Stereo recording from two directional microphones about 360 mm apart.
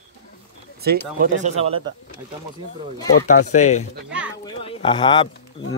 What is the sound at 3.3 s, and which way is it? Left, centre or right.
Speech, left.